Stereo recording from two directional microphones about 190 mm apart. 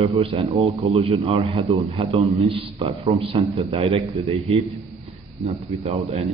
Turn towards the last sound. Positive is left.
turn(degrees=-35)  # may be behind; listen again after turning